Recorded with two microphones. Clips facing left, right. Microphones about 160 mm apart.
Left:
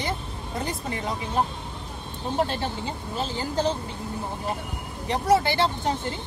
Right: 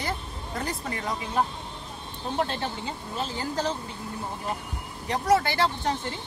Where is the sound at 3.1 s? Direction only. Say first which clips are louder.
Left 3 dB; 30° left (ahead or behind).